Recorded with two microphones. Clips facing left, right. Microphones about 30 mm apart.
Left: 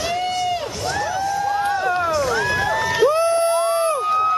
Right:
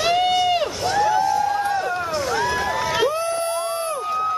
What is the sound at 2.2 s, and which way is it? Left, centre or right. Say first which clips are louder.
Run: left 2 dB; centre.